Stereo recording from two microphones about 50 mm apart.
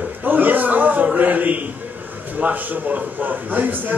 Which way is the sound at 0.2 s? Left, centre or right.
Right.